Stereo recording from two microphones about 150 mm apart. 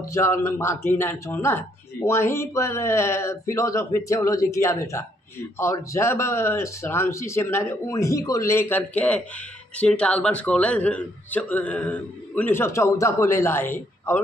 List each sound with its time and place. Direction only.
0.0 s a man's voice: 20° left (ahead or behind)